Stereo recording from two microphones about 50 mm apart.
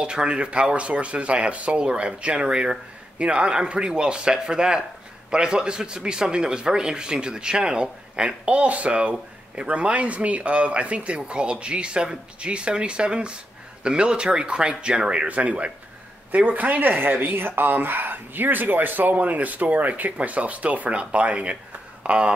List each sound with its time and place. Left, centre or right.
0.0 s a man's voice: centre